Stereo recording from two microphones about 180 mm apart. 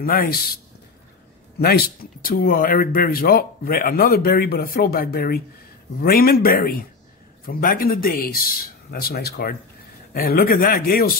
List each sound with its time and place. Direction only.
0.0 s speech: 55° left (ahead or behind)
1.6 s a man's voice: 60° left (ahead or behind)